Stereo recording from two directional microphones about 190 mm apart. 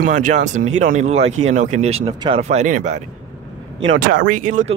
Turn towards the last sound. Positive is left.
turn(degrees=-45)  # may be behind; listen again after turning